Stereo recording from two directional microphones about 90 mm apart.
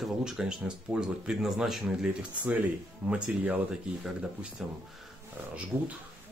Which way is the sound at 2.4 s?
15° right (ahead or behind).